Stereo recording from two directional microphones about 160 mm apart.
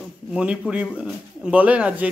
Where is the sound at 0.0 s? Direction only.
5° right (ahead or behind).